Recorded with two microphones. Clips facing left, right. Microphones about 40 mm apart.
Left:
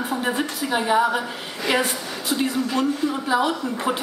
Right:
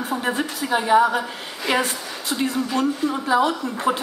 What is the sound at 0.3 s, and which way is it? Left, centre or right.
Speech, centre.